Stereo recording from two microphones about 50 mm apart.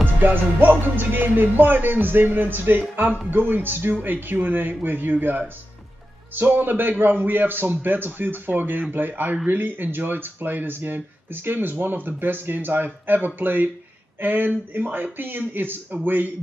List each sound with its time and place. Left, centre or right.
0.0 s music: right
6.3 s speech: right